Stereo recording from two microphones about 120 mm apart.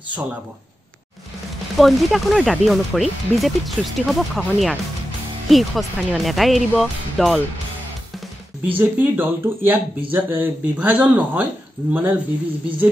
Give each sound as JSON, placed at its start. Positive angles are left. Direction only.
{"t": 1.8, "sound": "speech", "side_deg": 0}
{"t": 8.7, "sound": "speech", "side_deg": -15}